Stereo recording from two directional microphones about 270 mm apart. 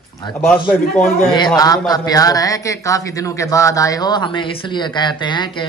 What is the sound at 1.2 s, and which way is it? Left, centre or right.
A man's voice, centre.